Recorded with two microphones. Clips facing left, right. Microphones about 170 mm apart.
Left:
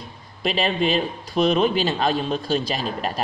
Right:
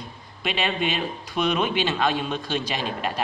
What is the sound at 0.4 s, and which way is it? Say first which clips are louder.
A man's voice: left 4 dB; 35° left (ahead or behind).